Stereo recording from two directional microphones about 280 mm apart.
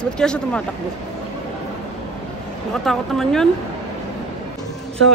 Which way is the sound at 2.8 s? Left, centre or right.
Centre.